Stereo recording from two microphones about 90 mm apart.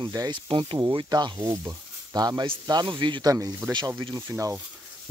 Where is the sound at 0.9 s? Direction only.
55° right (ahead or behind).